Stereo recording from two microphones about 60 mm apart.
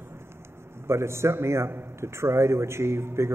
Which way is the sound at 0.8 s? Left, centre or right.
Right.